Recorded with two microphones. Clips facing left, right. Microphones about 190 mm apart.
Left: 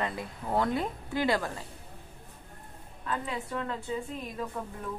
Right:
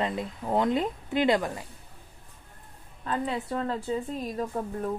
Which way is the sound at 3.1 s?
35° right (ahead or behind).